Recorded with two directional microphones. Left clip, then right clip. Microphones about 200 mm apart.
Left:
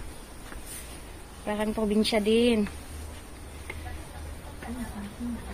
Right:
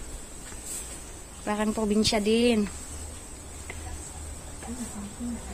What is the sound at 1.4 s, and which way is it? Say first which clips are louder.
Speech: right 1 dB; 35° right (ahead or behind).